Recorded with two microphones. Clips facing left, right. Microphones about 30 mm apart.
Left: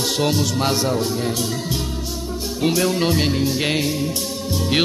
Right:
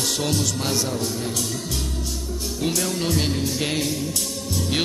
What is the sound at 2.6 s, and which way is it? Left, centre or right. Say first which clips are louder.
Music: left 6 dB; left.